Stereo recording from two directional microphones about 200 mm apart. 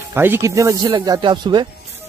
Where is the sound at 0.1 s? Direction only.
10° right (ahead or behind).